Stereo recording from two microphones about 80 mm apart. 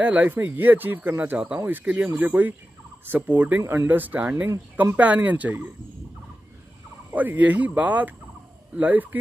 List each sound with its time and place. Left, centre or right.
0.0 s speech: right
7.2 s speech: centre